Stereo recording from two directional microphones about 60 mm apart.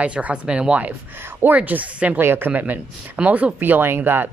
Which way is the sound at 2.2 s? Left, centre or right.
Right.